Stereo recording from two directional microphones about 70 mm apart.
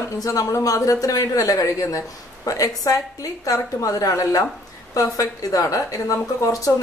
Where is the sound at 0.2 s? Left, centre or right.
Left.